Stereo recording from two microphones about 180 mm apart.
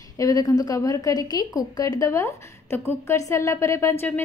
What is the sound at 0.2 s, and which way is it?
A woman's voice, 20° left (ahead or behind).